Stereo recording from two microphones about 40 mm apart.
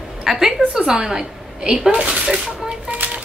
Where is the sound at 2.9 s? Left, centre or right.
Right.